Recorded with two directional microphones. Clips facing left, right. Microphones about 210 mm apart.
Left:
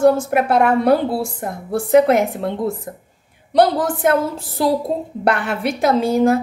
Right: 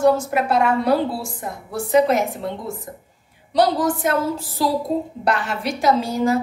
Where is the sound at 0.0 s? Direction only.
55° left (ahead or behind).